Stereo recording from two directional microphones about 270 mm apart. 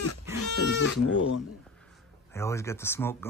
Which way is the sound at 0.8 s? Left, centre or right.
Left.